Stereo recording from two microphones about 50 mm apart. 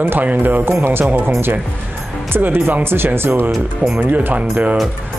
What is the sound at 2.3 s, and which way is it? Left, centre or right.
Speech, right.